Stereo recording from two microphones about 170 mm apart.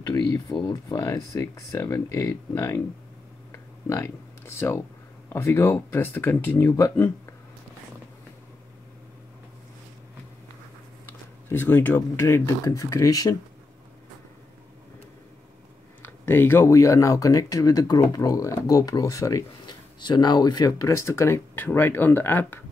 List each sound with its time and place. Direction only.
0.1 s speech: 25° left (ahead or behind)
3.5 s a sound: 15° left (ahead or behind)
5.3 s speech: 15° left (ahead or behind)
11.1 s speech: 15° left (ahead or behind)
16.0 s speech: 10° left (ahead or behind)